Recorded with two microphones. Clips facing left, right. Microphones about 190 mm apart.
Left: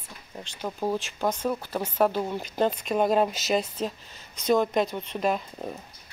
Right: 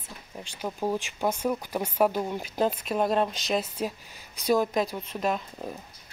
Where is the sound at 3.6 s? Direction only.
10° right (ahead or behind).